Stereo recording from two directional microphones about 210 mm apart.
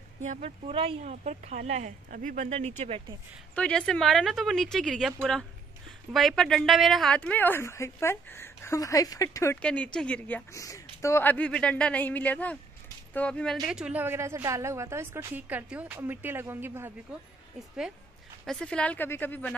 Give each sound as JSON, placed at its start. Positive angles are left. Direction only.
{"t": 0.2, "sound": "speech", "side_deg": -30}
{"t": 3.5, "sound": "a woman's voice", "side_deg": 5}
{"t": 18.4, "sound": "speech", "side_deg": 5}